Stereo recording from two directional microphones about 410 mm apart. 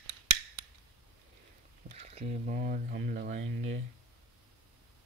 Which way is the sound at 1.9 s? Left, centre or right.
Centre.